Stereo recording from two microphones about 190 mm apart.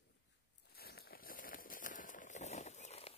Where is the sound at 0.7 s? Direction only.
55° left (ahead or behind).